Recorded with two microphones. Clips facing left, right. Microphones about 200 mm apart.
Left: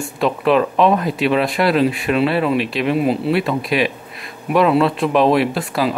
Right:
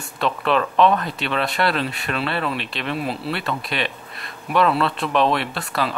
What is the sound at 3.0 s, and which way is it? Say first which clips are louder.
Speech: left 9 dB; centre (ahead or behind).